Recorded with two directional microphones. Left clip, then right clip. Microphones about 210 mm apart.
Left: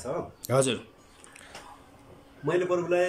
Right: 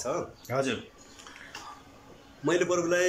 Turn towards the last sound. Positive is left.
turn(degrees=5)  # may be behind; listen again after turning